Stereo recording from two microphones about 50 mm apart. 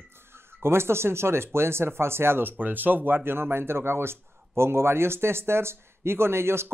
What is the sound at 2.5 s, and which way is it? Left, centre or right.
Speech, right.